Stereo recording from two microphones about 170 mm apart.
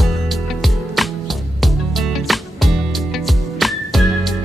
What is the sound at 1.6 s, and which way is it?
Music, centre (ahead or behind).